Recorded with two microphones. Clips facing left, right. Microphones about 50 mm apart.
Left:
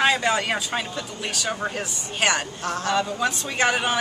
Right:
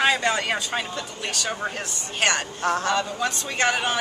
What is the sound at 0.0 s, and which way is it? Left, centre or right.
A woman's voice, centre.